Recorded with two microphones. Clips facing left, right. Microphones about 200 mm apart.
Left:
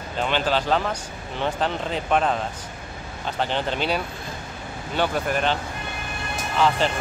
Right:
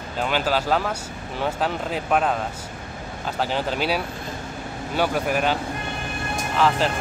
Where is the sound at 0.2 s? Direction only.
5° right (ahead or behind).